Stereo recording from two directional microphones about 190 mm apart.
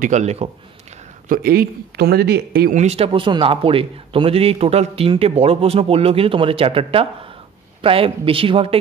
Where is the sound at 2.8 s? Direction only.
35° right (ahead or behind).